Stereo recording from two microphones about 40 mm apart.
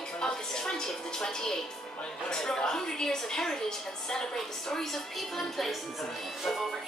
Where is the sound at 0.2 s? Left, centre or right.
Centre.